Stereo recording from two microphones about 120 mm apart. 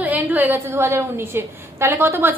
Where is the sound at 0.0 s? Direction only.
15° right (ahead or behind).